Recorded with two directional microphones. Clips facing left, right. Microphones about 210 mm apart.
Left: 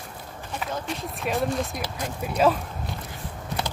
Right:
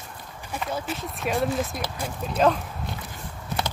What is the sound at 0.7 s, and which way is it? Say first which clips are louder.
Speech: right 1 dB; 5° right (ahead or behind).